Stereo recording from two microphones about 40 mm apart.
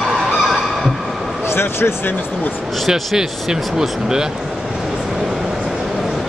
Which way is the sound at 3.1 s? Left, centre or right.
Centre.